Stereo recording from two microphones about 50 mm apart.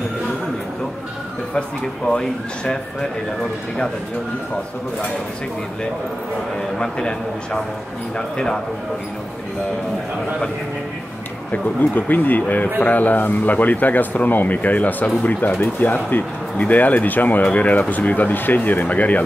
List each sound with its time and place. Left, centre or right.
2.0 s speech: centre
6.6 s speech: centre
11.5 s speech: left